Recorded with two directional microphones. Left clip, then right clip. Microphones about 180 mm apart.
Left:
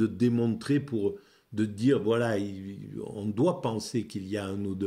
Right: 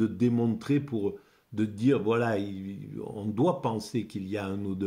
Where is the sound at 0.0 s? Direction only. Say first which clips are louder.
Even; 20° left (ahead or behind).